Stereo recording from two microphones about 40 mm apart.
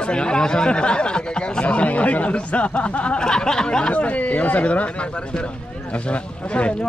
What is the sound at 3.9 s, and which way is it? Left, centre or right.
Speech, left.